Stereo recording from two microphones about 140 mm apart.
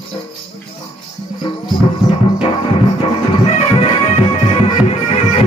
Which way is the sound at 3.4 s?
45° left (ahead or behind).